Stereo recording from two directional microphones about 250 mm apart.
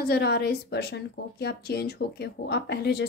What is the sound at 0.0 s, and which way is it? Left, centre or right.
A woman's voice, left.